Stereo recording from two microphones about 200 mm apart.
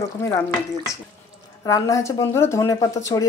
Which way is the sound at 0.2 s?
15° left (ahead or behind).